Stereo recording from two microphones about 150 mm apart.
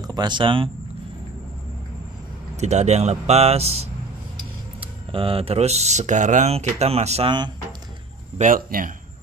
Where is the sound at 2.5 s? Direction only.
50° right (ahead or behind).